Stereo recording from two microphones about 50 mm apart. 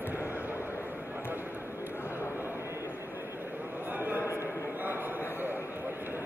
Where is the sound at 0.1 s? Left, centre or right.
Right.